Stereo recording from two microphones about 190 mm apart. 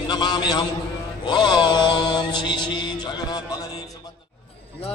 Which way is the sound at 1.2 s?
20° left (ahead or behind).